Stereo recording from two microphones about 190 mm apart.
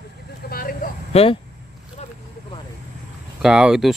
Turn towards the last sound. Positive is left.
turn(degrees=-5)  # may be behind; listen again after turning